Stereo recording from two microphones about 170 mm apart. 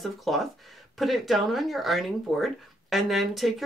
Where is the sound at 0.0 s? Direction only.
Centre (ahead or behind).